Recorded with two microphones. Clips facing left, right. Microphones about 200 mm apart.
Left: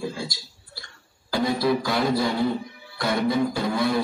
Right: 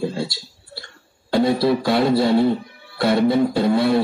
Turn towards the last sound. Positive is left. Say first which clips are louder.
# right 6 dB
turn(degrees=-30)  # may be behind; listen again after turning